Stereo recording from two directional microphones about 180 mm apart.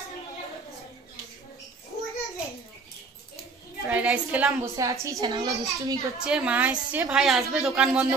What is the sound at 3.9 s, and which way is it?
Speech, 5° right (ahead or behind).